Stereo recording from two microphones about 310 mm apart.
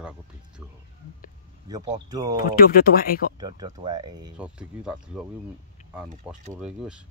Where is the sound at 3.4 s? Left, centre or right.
Centre.